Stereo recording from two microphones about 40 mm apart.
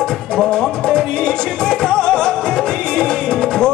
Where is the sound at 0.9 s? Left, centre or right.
Centre.